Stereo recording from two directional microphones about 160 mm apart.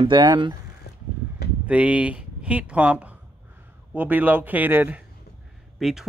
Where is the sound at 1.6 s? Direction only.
10° right (ahead or behind).